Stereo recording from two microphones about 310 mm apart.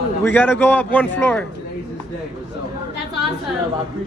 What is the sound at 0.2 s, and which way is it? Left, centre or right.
A man's voice, centre.